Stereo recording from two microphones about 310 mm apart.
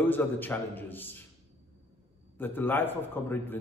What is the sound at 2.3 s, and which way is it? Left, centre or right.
A man's voice, centre.